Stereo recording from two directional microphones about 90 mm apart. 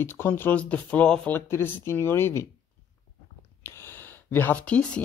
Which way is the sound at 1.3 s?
25° left (ahead or behind).